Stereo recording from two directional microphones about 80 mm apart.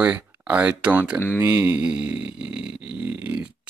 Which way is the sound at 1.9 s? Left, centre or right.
Centre.